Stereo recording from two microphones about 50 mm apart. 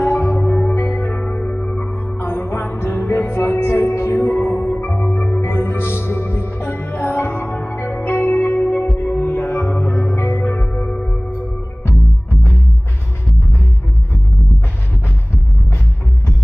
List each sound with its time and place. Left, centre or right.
0.0 s music: left
0.9 s music: left
2.1 s music: left
3.3 s music: left
4.7 s music: left
10.1 s music: left